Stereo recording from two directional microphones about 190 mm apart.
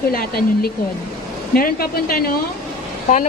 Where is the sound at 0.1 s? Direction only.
50° left (ahead or behind).